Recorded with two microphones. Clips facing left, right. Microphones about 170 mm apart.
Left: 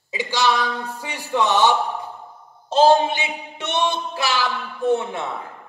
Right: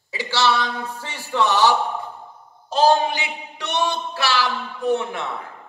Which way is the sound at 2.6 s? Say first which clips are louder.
Left 2 dB; 25° left (ahead or behind).